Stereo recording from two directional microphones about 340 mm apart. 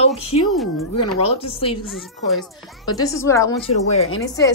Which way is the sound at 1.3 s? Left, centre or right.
Centre.